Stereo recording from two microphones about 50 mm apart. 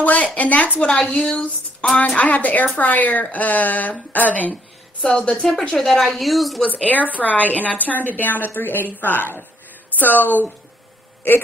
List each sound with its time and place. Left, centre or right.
0.0 s a woman's voice: left
2.0 s a woman's voice: left
5.0 s a woman's voice: centre
6.7 s a woman's voice: left